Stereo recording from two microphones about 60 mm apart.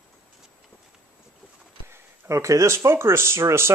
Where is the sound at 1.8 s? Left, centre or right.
Right.